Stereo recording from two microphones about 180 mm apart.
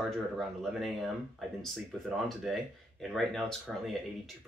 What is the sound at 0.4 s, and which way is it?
Speech, centre (ahead or behind).